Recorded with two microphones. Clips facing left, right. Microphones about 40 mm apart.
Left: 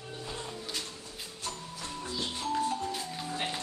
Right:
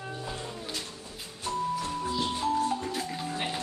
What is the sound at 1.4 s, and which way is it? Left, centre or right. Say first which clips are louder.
Music: right 11 dB; centre.